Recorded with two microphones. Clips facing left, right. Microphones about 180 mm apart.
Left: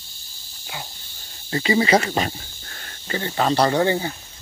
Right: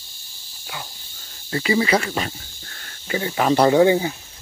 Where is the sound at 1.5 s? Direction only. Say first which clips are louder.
Left 1 dB; 30° left (ahead or behind).